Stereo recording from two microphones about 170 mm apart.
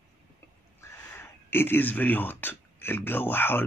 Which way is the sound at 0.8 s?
15° left (ahead or behind).